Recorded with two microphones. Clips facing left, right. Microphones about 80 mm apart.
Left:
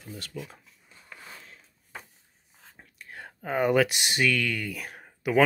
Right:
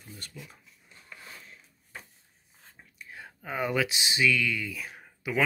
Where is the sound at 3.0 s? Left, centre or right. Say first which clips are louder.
Left 2 dB; left.